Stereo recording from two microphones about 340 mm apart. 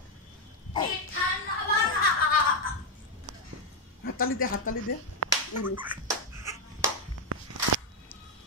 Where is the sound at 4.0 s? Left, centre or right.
Left.